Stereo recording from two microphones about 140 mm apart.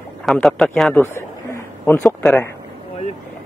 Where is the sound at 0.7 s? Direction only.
10° left (ahead or behind).